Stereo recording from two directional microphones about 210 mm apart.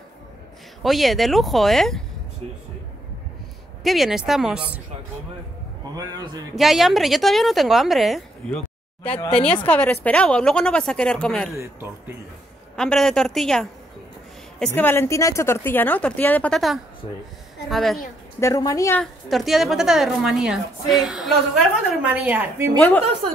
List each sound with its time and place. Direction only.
0.8 s a woman's voice: centre (ahead or behind)
3.8 s a woman's voice: centre (ahead or behind)
5.9 s a woman's voice: 15° right (ahead or behind)
6.5 s a woman's voice: centre (ahead or behind)
11.5 s a woman's voice: 15° right (ahead or behind)
12.7 s a woman's voice: 5° left (ahead or behind)
18.4 s a woman's voice: 15° left (ahead or behind)
19.2 s a woman's voice: centre (ahead or behind)